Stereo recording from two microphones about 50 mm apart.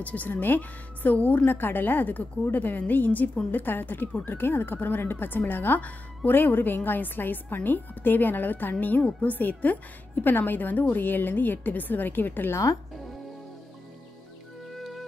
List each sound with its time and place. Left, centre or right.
0.0 s speech: left
14.7 s music: centre